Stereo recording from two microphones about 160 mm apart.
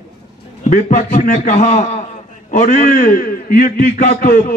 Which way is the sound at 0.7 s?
55° left (ahead or behind).